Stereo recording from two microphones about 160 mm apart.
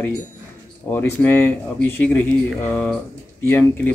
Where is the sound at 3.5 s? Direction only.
15° left (ahead or behind).